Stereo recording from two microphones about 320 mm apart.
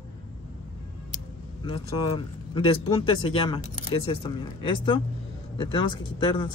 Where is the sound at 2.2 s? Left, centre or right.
Centre.